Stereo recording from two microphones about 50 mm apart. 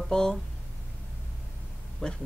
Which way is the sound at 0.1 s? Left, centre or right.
Centre.